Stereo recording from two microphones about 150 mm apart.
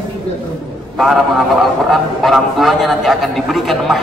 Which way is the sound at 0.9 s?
Centre (ahead or behind).